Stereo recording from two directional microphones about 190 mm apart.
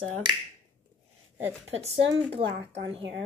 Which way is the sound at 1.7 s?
30° right (ahead or behind).